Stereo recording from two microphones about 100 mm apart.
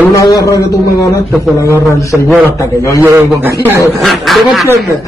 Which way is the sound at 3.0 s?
20° right (ahead or behind).